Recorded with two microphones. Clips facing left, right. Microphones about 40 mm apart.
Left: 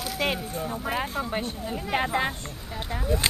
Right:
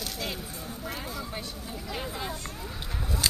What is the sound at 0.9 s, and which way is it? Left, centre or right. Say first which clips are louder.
Speech: left 8 dB; left.